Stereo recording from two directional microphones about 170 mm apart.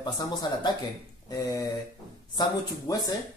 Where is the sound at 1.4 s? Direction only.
20° left (ahead or behind).